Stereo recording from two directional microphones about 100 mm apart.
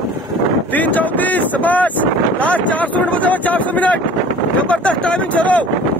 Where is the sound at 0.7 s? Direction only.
15° left (ahead or behind).